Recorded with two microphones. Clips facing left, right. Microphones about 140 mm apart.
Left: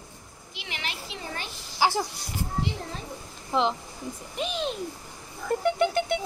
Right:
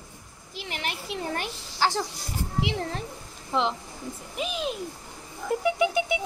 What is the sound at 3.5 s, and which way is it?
Speech, centre (ahead or behind).